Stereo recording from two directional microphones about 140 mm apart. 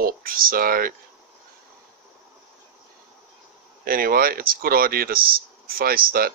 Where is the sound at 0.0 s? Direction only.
90° right.